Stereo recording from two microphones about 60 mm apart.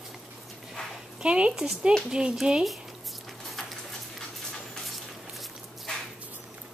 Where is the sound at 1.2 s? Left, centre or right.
Centre.